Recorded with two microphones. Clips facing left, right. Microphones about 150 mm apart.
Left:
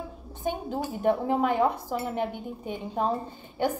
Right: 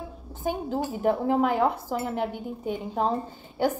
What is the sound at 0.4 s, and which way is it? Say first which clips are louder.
A woman's voice: right 2 dB; 5° right (ahead or behind).